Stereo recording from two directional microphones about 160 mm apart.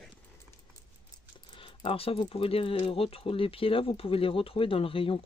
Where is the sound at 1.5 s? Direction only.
30° left (ahead or behind).